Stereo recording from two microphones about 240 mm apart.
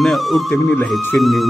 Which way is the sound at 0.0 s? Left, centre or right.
Centre.